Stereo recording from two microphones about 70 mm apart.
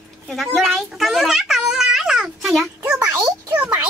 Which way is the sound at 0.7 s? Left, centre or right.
Centre.